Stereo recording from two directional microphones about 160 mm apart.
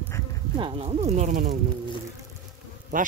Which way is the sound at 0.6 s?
35° right (ahead or behind).